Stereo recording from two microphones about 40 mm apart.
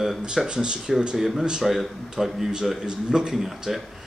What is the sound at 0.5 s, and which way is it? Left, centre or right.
Speech, right.